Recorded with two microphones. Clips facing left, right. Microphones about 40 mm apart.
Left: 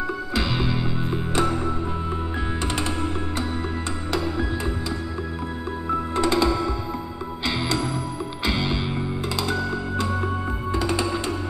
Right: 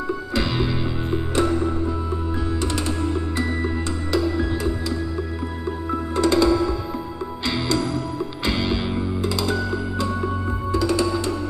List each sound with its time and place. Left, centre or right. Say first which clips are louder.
0.3 s music: right 2 dB; centre
2.6 s music: even; left
4.1 s music: right 4 dB; left
6.1 s music: right 4 dB; centre
10.2 s music: right 1 dB; left